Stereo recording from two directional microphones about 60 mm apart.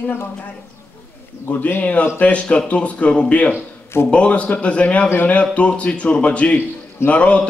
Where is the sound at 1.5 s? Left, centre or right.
Left.